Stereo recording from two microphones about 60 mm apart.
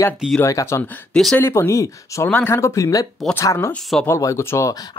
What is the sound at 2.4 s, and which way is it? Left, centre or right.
Speech, left.